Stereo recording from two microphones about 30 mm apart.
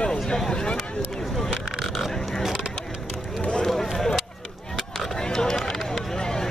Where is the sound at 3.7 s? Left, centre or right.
Centre.